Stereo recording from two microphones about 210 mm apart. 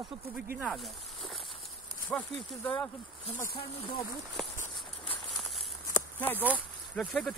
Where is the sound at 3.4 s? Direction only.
45° left (ahead or behind).